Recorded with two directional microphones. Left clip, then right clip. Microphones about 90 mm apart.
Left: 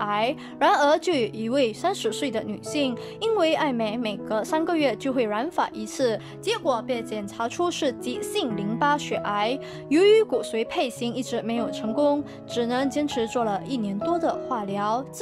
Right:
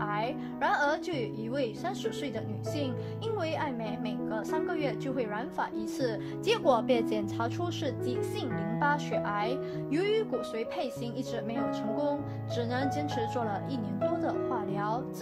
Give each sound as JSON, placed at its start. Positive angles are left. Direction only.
{"t": 0.0, "sound": "a woman's voice", "side_deg": 25}
{"t": 6.4, "sound": "speech", "side_deg": -5}
{"t": 7.4, "sound": "a woman's voice", "side_deg": 35}
{"t": 8.1, "sound": "speech", "side_deg": 20}
{"t": 9.8, "sound": "a woman's voice", "side_deg": 40}
{"t": 13.4, "sound": "speech", "side_deg": 25}
{"t": 14.7, "sound": "speech", "side_deg": 15}